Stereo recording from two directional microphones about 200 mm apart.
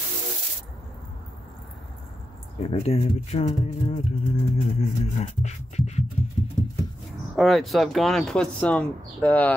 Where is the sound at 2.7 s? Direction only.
30° left (ahead or behind).